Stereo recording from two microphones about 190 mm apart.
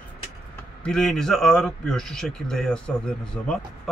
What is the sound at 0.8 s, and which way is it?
A man's voice, 5° left (ahead or behind).